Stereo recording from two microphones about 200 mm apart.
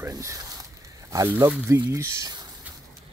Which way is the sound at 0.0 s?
15° right (ahead or behind).